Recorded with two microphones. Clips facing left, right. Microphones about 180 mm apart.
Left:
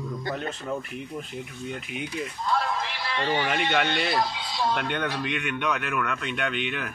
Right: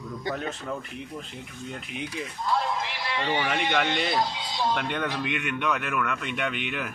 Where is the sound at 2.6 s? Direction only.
15° right (ahead or behind).